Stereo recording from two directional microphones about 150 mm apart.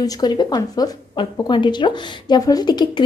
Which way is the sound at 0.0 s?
25° left (ahead or behind).